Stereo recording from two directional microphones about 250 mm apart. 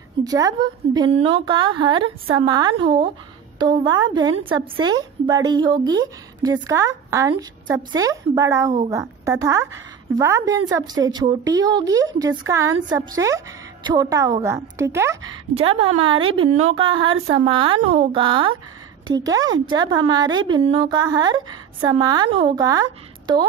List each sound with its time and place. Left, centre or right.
0.2 s a woman's voice: centre
15.5 s a woman's voice: right